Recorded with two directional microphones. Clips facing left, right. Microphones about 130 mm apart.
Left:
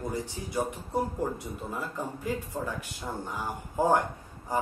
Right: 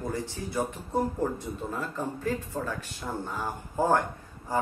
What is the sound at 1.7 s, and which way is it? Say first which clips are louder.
Speech: right 1 dB; 15° left (ahead or behind).